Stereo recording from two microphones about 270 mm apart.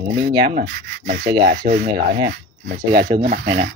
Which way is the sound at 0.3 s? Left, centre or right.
Right.